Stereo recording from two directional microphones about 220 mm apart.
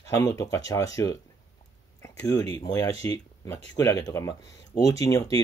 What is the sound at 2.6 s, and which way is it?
Speech, 15° left (ahead or behind).